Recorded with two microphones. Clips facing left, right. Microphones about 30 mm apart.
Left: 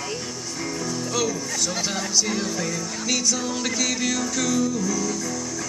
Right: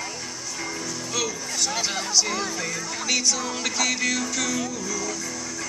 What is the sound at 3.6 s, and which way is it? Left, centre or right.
Music, centre.